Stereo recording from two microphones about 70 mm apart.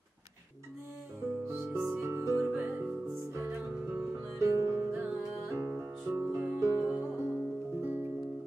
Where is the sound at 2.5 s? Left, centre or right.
Right.